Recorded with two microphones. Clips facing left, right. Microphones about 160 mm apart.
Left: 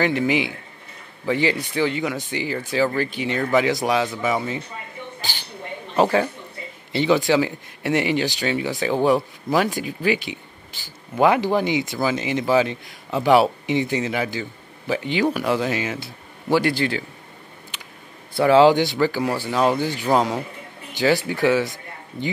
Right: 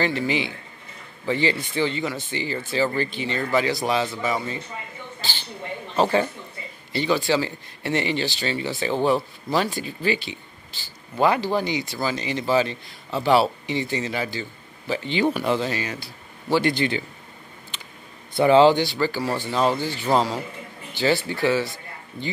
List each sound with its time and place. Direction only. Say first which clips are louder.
0.0 s speech: left 3 dB; 15° left (ahead or behind)
5.9 s a man's voice: left 2 dB; 10° left (ahead or behind)
18.3 s speech: left 1 dB; 5° left (ahead or behind)